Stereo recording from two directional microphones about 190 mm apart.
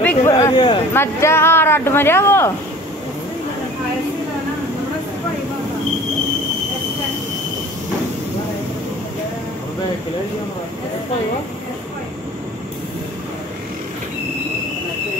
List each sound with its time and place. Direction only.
0.0 s a sound: 10° left (ahead or behind)
0.5 s speech: 25° left (ahead or behind)
0.9 s speech: 15° left (ahead or behind)